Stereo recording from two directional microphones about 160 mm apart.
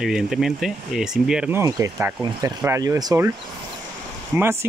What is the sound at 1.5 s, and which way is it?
Speech, 20° right (ahead or behind).